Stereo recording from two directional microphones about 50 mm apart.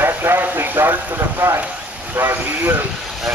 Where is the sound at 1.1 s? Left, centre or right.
Right.